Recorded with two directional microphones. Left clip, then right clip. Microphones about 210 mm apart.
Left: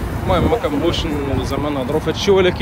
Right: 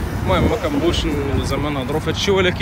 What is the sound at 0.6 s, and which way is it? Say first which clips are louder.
Speech: left 1 dB; 15° left (ahead or behind).